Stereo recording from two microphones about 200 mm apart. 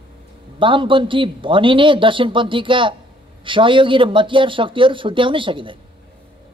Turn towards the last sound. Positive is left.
turn(degrees=-25)  # may be behind; listen again after turning